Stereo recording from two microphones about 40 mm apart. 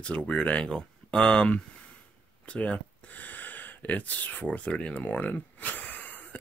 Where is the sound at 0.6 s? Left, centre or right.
Centre; by 4.7 s left.